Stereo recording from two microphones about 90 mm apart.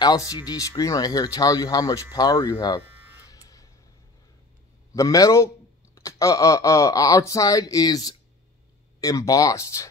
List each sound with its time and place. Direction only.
0.0 s speech: 45° left (ahead or behind)
3.3 s buzzer: 40° left (ahead or behind)
4.9 s speech: 40° left (ahead or behind)